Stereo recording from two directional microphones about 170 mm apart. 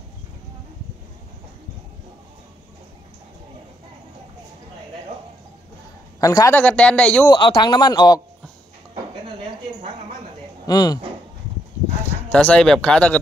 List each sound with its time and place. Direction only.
6.2 s speech: 20° left (ahead or behind)
6.6 s speech: 5° left (ahead or behind)
7.2 s speech: 25° left (ahead or behind)
10.7 s speech: 20° left (ahead or behind)
12.3 s speech: 10° left (ahead or behind)